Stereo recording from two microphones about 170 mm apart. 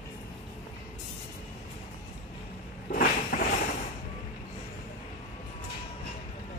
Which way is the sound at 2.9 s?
55° left (ahead or behind).